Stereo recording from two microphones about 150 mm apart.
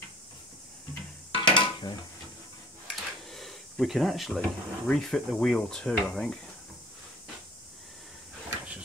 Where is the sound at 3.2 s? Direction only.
Centre (ahead or behind).